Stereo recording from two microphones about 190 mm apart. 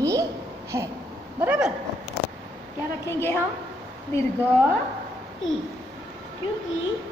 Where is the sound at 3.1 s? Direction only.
15° left (ahead or behind).